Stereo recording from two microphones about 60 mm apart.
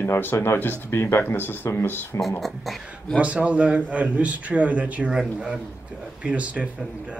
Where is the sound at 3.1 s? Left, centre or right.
Right.